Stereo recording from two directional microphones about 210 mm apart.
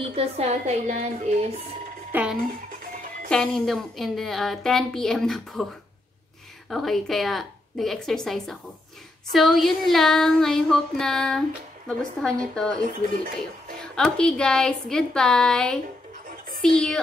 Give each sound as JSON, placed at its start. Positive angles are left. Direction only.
{"t": 0.0, "sound": "a woman's voice", "side_deg": -25}
{"t": 2.1, "sound": "speech", "side_deg": -10}
{"t": 3.3, "sound": "a woman's voice", "side_deg": 5}
{"t": 6.7, "sound": "a woman's voice", "side_deg": 0}
{"t": 13.7, "sound": "a woman's voice", "side_deg": 5}